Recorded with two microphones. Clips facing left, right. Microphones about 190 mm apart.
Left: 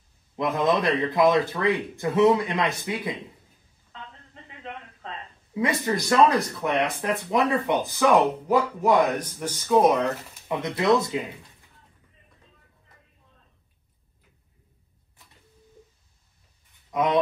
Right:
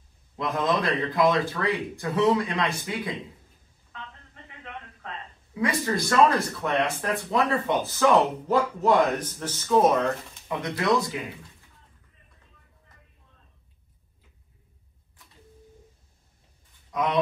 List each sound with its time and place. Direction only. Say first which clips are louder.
0.4 s a man's voice: left 3 dB; 20° left (ahead or behind)
5.0 s a man's voice: left 1 dB; 20° left (ahead or behind)
16.9 s speech: left 3 dB; 20° left (ahead or behind)